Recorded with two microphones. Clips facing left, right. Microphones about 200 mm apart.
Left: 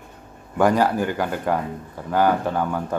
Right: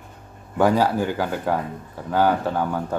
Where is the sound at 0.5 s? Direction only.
5° right (ahead or behind).